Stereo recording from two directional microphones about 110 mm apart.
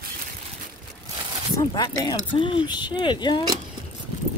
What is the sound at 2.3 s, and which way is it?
Speech, 50° left (ahead or behind).